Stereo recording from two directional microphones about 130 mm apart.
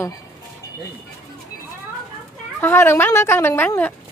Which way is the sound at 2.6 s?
20° left (ahead or behind).